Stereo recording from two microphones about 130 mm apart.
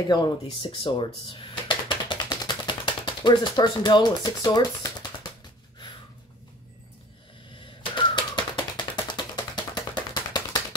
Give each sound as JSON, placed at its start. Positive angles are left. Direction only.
{"t": 0.1, "sound": "speech", "side_deg": 40}
{"t": 7.5, "sound": "typewriter", "side_deg": 40}